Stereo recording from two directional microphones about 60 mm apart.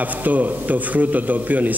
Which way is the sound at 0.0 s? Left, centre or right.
Right.